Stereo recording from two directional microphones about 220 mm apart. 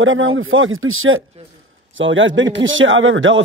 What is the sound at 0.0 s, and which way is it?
A man's voice, 65° right (ahead or behind).